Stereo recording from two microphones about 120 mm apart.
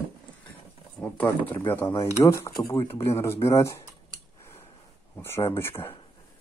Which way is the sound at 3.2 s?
20° left (ahead or behind).